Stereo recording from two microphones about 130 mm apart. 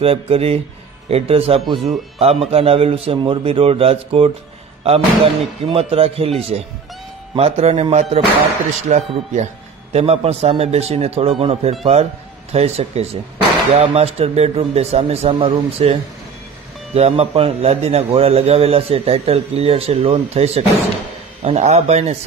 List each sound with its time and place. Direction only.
0.0 s a man's voice: 45° right (ahead or behind); by 9.5 s 65° right (ahead or behind)
9.9 s a man's voice: 50° right (ahead or behind)